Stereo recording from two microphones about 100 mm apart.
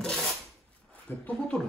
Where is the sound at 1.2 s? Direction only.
10° left (ahead or behind).